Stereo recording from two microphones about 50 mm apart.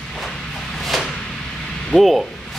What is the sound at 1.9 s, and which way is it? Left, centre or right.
Speech, left.